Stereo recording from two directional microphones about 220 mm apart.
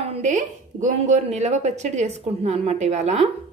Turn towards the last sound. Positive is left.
turn(degrees=-30)  # may be behind; listen again after turning